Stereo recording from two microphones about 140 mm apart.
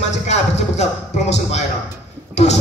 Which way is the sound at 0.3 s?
55° left (ahead or behind).